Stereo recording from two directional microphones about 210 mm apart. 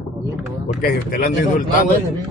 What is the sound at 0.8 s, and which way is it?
Speech, 45° left (ahead or behind).